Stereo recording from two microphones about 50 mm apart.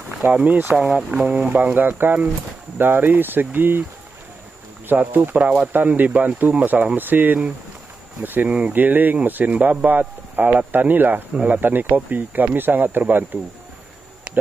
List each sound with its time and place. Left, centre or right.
0.2 s speech: right
0.7 s speech: centre
1.5 s speech: right
4.8 s speech: right
5.7 s speech: right
8.5 s speech: right
8.7 s a man's voice: right